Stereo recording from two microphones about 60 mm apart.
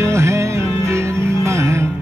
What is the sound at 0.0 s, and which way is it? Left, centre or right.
Music, right.